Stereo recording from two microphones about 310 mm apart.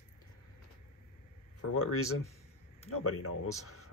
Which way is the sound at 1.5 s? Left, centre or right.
Left.